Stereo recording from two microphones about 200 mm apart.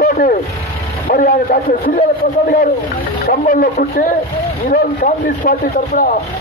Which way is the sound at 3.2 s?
45° left (ahead or behind).